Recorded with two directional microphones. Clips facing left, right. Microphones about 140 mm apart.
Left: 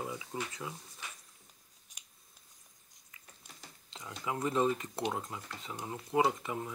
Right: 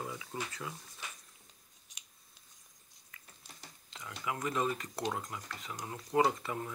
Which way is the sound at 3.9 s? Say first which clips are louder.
Left 1 dB; 25° left (ahead or behind).